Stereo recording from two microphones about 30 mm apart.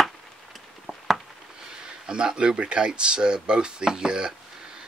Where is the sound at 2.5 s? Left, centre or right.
Right.